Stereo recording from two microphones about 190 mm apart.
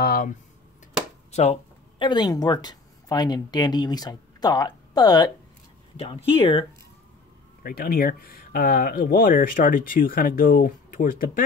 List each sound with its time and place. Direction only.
0.0 s speech: 50° left (ahead or behind)
1.3 s speech: 30° left (ahead or behind)
7.6 s speech: 50° left (ahead or behind)